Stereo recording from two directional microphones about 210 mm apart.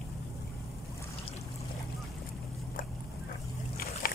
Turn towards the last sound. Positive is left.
turn(degrees=45)  # may be behind; listen again after turning